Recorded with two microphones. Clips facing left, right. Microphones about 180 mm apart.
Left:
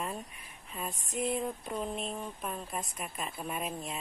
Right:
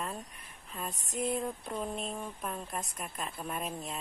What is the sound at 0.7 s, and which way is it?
Speech, centre (ahead or behind).